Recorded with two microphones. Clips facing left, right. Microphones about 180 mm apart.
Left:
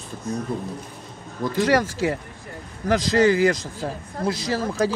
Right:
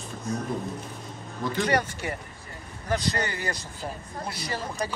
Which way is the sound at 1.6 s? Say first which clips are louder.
Left 7 dB; 90° left.